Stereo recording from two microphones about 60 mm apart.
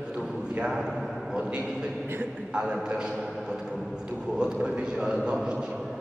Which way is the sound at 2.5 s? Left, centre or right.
Centre.